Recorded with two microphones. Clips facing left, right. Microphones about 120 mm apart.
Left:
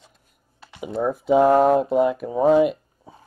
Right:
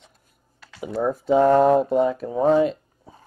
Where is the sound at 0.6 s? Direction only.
20° left (ahead or behind).